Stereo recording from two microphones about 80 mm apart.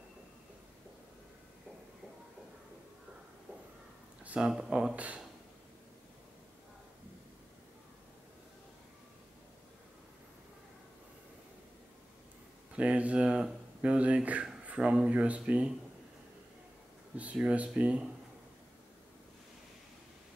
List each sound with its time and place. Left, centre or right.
4.2 s a sound: centre
4.5 s speech: centre
12.7 s speech: centre
17.4 s speech: centre